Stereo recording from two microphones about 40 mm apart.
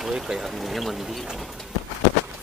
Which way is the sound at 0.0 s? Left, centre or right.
Centre.